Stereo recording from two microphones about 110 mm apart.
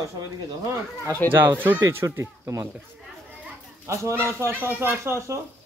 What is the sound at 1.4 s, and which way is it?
A man's voice, 20° right (ahead or behind).